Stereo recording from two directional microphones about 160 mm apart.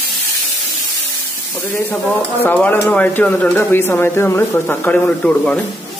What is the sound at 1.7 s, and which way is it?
Speech, 15° left (ahead or behind).